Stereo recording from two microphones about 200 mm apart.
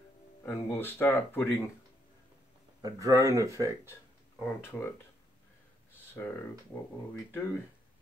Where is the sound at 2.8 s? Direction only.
15° right (ahead or behind).